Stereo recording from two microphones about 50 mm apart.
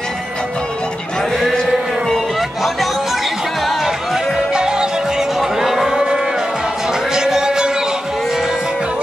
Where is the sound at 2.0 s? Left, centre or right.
Centre.